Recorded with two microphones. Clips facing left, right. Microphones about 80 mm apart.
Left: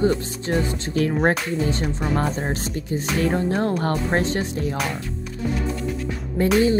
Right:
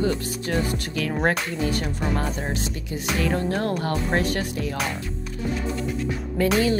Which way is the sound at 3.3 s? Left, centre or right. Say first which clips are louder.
Left 3 dB; left.